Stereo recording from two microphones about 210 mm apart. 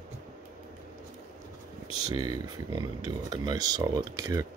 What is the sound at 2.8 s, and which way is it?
Speech, 20° right (ahead or behind).